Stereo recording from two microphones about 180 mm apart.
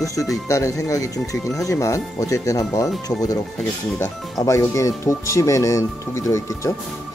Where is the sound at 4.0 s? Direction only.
15° left (ahead or behind).